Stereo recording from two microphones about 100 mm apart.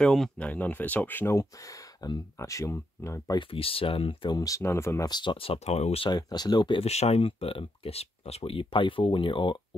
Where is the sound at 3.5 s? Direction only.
70° left (ahead or behind).